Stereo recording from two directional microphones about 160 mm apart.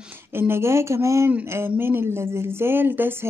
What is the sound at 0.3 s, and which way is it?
Speech, 15° right (ahead or behind).